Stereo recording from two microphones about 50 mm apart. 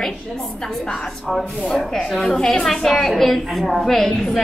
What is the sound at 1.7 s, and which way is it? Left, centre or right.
A woman's voice, centre.